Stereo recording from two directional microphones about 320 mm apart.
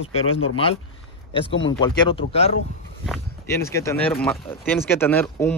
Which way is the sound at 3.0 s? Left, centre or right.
Centre.